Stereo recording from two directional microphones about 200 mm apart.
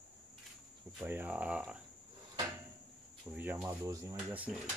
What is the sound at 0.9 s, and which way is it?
Speech, 10° right (ahead or behind).